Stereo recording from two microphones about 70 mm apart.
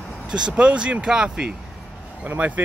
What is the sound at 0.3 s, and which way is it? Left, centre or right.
Speech, centre.